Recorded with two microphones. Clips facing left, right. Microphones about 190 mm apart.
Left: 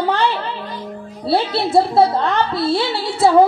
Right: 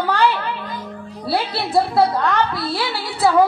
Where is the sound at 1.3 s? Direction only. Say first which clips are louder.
Left 4 dB; 25° left (ahead or behind).